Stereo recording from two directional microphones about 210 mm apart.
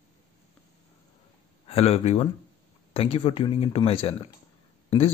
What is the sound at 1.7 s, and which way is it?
Speech, 30° left (ahead or behind).